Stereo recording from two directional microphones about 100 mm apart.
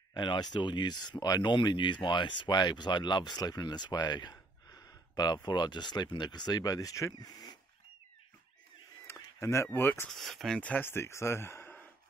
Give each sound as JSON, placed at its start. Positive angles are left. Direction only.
{"t": 0.1, "sound": "speech", "side_deg": 50}
{"t": 9.0, "sound": "a sound", "side_deg": 30}
{"t": 9.7, "sound": "speech", "side_deg": 20}
{"t": 10.0, "sound": "speech", "side_deg": 0}
{"t": 10.6, "sound": "speech", "side_deg": 20}